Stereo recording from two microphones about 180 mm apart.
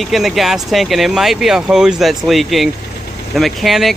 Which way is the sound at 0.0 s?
Centre (ahead or behind).